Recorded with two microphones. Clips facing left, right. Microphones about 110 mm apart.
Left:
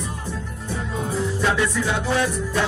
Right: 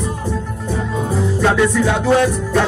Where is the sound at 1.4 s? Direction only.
60° right (ahead or behind).